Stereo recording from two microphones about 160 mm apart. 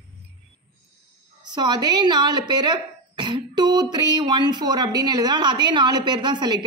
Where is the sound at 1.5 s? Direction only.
25° right (ahead or behind).